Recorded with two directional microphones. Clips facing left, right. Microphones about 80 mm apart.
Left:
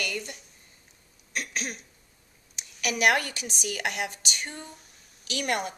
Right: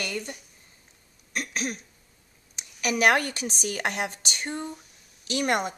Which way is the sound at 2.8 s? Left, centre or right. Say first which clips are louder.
Right 2 dB; right.